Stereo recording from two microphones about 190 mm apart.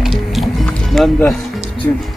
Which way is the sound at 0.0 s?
Centre (ahead or behind).